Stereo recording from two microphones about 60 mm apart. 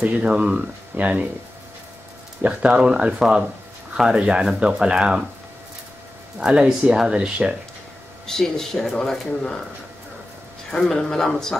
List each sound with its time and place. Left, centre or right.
0.0 s speech: centre
2.4 s speech: centre
6.4 s speech: centre
8.3 s speech: centre
10.7 s speech: centre